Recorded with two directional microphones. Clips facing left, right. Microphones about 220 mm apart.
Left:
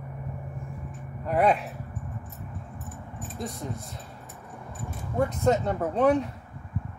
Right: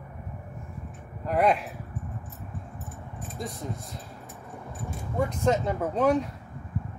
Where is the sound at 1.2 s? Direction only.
Centre (ahead or behind).